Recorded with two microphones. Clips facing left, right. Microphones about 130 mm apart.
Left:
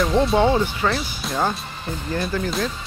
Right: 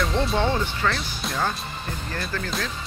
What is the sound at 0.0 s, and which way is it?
Speech, 5° left (ahead or behind).